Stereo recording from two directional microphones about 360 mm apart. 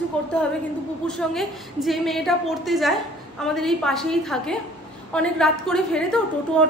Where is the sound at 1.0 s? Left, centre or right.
Centre.